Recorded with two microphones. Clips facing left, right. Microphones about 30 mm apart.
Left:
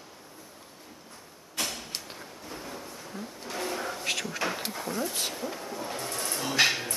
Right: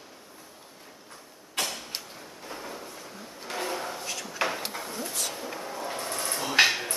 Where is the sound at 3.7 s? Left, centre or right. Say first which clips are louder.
Left 2 dB; centre.